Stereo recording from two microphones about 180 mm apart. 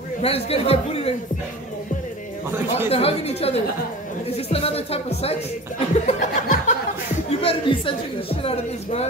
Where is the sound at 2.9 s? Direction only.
35° left (ahead or behind).